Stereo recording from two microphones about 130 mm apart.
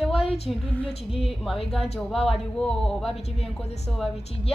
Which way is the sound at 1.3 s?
Centre (ahead or behind).